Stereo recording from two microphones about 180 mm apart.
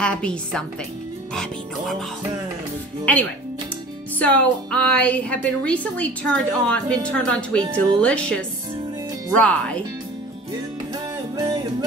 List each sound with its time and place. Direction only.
0.0 s speech: 5° left (ahead or behind)
3.1 s a woman's voice: 10° left (ahead or behind)
11.3 s music: 25° right (ahead or behind)